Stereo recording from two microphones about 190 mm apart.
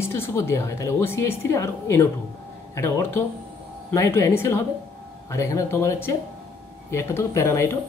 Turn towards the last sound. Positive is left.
turn(degrees=15)  # may be behind; listen again after turning